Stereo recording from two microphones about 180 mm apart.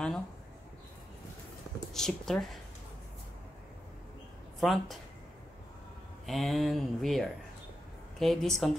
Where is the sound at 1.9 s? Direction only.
Centre (ahead or behind).